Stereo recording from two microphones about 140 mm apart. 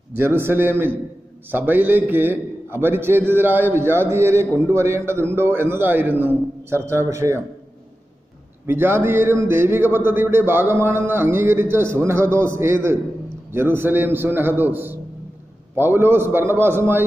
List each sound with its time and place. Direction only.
0.2 s a man's voice: 15° right (ahead or behind)
8.6 s a man's voice: 15° right (ahead or behind)